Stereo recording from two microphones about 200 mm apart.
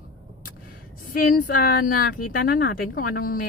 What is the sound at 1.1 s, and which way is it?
Speech, 45° left (ahead or behind).